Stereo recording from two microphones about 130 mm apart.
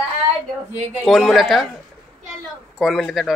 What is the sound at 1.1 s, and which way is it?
Speech, centre (ahead or behind).